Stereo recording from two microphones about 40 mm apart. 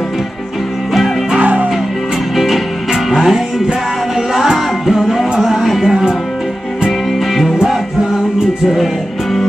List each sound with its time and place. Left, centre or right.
1.4 s music: right
2.3 s music: centre
4.8 s music: centre